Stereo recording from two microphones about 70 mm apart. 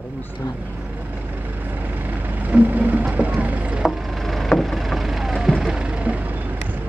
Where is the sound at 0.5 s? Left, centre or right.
Right.